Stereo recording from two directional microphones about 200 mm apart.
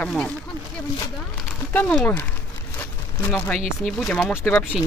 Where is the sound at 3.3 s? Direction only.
5° left (ahead or behind).